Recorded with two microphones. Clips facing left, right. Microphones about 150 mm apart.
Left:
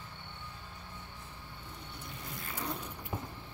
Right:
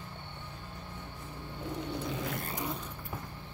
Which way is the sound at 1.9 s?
90° right.